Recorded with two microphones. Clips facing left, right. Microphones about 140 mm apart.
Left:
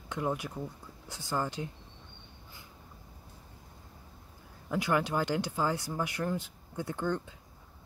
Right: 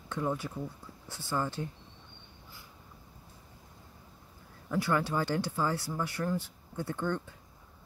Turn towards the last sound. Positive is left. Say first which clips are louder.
# even
turn(degrees=15)  # may be behind; listen again after turning